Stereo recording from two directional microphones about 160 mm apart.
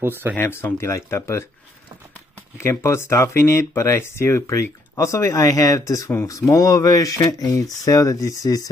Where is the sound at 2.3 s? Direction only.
15° left (ahead or behind).